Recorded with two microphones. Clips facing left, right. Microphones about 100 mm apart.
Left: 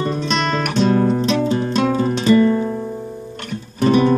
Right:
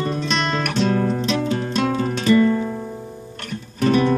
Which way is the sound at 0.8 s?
30° left (ahead or behind).